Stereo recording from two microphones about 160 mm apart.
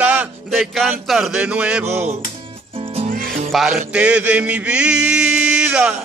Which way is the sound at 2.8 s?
35° right (ahead or behind).